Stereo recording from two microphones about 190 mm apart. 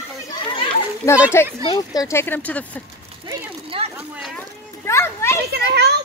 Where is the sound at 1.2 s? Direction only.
15° left (ahead or behind).